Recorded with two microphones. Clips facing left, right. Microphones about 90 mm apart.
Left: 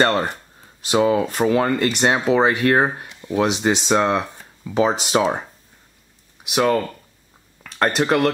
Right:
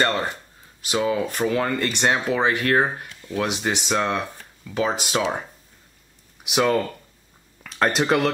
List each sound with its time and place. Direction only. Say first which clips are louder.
1.0 s speech: left 4 dB; 25° left (ahead or behind)
6.4 s speech: left 2 dB; centre (ahead or behind)